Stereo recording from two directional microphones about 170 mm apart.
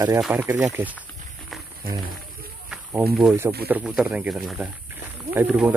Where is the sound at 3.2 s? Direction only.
10° right (ahead or behind).